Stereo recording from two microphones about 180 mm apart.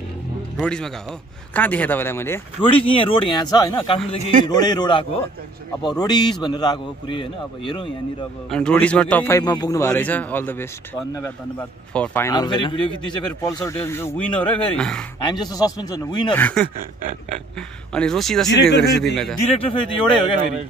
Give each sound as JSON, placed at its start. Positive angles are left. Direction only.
{"t": 0.6, "sound": "speech", "side_deg": 5}
{"t": 2.6, "sound": "a man's voice", "side_deg": 30}
{"t": 4.2, "sound": "a man's voice", "side_deg": -45}
{"t": 4.5, "sound": "a man's voice", "side_deg": 20}
{"t": 8.5, "sound": "speech", "side_deg": 5}
{"t": 9.4, "sound": "speech", "side_deg": 20}
{"t": 11.9, "sound": "speech", "side_deg": 10}
{"t": 15.2, "sound": "a man's voice", "side_deg": 25}
{"t": 16.3, "sound": "speech", "side_deg": 10}
{"t": 17.9, "sound": "speech", "side_deg": 5}
{"t": 18.5, "sound": "speech", "side_deg": 70}
{"t": 19.4, "sound": "speech", "side_deg": 30}